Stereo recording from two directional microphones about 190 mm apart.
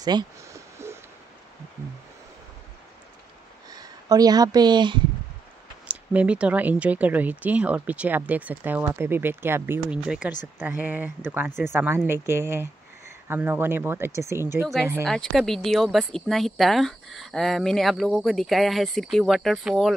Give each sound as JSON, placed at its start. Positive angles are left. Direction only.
{"t": 0.0, "sound": "a sound", "side_deg": -20}
{"t": 3.7, "sound": "speech", "side_deg": -20}
{"t": 5.9, "sound": "speech", "side_deg": -5}
{"t": 15.0, "sound": "speech", "side_deg": 0}